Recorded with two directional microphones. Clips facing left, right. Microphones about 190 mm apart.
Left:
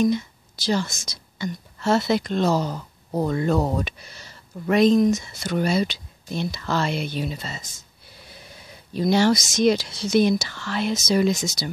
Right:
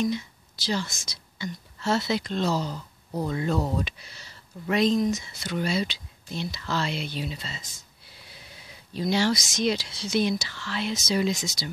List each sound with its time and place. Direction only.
0.0 s speech: 45° left (ahead or behind)